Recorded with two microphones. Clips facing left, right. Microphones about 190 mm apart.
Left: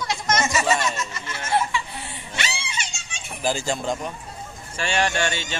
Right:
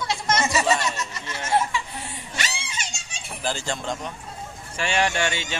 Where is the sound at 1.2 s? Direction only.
20° right (ahead or behind).